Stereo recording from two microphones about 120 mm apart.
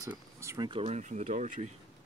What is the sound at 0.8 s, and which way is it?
Speech, 75° right (ahead or behind).